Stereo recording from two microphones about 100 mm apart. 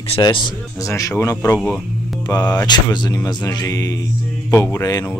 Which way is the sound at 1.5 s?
Centre (ahead or behind).